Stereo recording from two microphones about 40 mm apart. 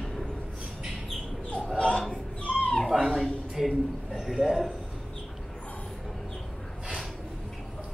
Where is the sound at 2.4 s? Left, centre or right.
Left.